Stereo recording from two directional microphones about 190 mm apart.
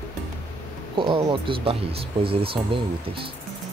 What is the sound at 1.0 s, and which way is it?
Speech, 25° right (ahead or behind).